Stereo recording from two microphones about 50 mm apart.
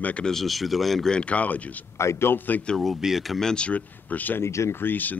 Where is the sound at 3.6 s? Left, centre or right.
Left.